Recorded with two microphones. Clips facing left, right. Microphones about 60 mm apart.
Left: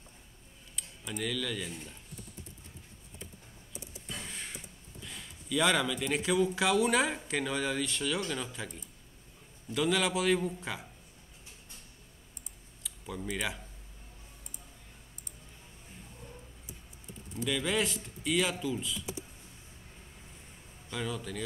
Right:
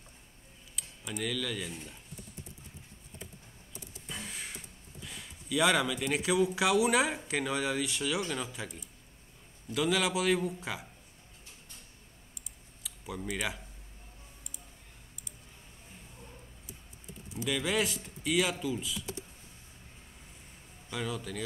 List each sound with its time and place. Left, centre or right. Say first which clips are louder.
0.7 s speech: even; centre
3.7 s vehicle: left 2 dB; left
4.1 s speech: right 1 dB; centre
9.7 s a man's voice: even; centre
12.8 s speech: even; centre
17.3 s a man's voice: even; centre
20.9 s a man's voice: even; centre